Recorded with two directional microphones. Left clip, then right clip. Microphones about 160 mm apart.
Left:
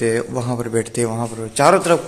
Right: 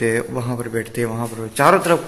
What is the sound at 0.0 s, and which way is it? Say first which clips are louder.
Speech: left 1 dB; 5° left (ahead or behind).